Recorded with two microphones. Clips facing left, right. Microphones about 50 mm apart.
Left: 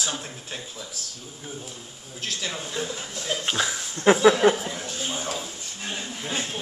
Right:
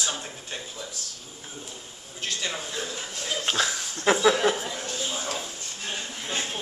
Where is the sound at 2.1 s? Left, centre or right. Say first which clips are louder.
Even; centre.